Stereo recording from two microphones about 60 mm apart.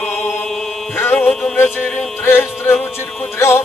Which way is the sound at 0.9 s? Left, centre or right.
Left.